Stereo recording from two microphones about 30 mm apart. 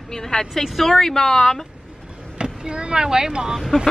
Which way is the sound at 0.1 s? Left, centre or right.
Centre.